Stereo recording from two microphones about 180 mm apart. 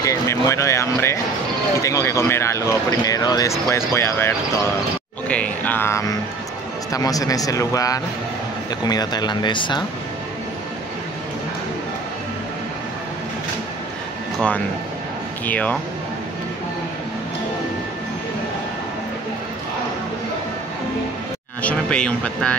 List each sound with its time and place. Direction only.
0.0 s speech: 15° left (ahead or behind)
15.4 s speech: 10° left (ahead or behind)
21.6 s speech: 5° left (ahead or behind)